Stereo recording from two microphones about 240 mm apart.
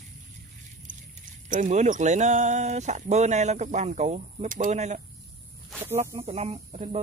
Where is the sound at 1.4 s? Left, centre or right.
Right.